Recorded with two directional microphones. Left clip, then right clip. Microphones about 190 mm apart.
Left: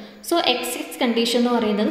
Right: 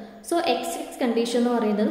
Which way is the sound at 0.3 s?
15° left (ahead or behind).